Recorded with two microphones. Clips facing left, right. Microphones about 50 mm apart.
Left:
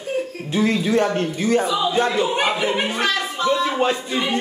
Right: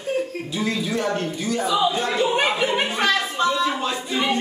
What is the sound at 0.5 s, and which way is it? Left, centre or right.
A man's voice, left.